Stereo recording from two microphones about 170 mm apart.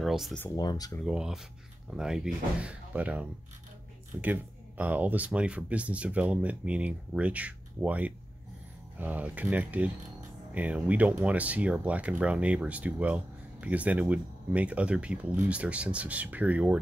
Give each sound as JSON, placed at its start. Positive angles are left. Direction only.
{"t": 0.0, "sound": "a sound", "side_deg": 0}
{"t": 0.6, "sound": "speech", "side_deg": 20}
{"t": 1.0, "sound": "speech", "side_deg": -5}